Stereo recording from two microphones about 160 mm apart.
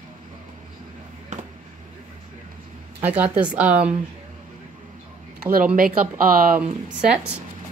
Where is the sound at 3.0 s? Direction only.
10° right (ahead or behind).